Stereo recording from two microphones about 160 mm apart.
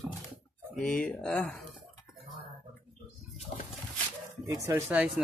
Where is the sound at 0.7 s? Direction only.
5° left (ahead or behind).